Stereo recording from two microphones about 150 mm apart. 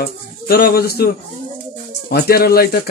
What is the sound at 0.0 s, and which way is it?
Speech, 85° left.